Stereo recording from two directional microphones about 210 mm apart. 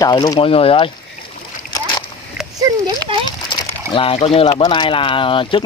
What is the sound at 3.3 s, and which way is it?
Speech, 20° left (ahead or behind).